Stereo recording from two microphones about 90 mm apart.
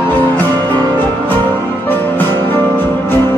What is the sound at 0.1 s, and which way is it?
Music, 20° left (ahead or behind).